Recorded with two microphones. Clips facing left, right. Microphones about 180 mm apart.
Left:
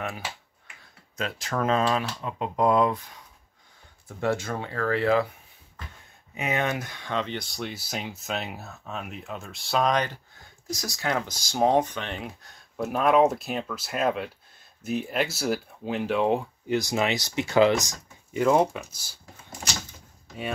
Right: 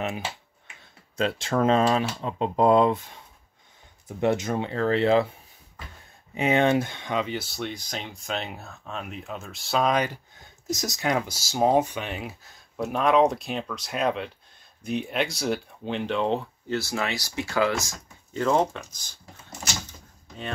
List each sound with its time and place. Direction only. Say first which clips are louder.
0.0 s speech: right 3 dB; 20° right (ahead or behind)
4.2 s speech: right 3 dB; 20° right (ahead or behind)
6.3 s speech: right 7 dB; 30° right (ahead or behind)
7.1 s speech: right 2 dB; 10° right (ahead or behind)
10.7 s speech: right 3 dB; 20° right (ahead or behind); by 19.1 s 10° left (ahead or behind)